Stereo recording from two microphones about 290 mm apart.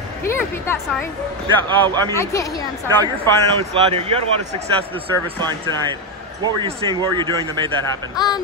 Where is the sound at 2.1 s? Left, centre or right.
Centre.